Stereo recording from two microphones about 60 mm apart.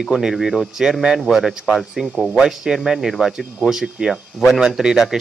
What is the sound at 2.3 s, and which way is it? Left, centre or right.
Speech, centre.